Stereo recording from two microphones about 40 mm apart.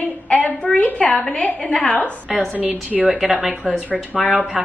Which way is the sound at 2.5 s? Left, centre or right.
Right.